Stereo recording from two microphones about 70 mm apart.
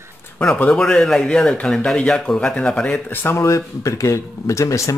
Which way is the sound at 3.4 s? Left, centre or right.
Left.